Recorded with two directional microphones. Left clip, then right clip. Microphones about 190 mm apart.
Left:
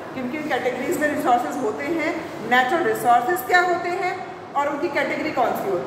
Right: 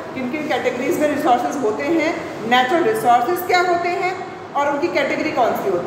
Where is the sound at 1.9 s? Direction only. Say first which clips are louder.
Right 5 dB; 10° right (ahead or behind).